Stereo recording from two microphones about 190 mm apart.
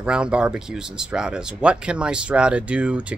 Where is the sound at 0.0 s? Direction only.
5° right (ahead or behind).